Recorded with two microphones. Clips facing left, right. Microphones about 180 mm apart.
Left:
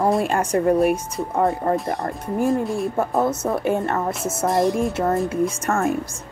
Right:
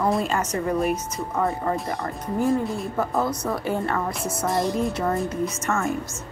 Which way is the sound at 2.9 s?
25° left (ahead or behind).